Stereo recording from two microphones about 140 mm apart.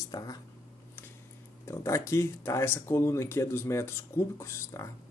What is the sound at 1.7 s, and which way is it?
Speech, 20° left (ahead or behind).